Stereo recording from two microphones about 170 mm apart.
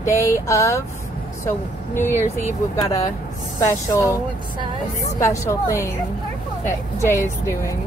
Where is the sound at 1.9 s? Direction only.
15° left (ahead or behind).